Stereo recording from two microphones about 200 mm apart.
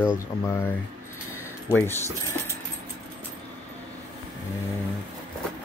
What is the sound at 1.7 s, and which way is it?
Speech, 10° left (ahead or behind).